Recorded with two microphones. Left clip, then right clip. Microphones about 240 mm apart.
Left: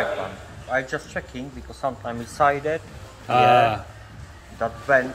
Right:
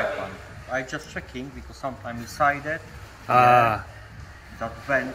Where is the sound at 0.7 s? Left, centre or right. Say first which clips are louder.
Left 4 dB; centre.